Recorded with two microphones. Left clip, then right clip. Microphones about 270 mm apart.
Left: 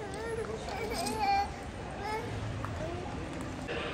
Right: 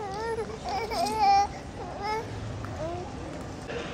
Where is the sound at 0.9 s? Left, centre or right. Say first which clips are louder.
Right 8 dB; right.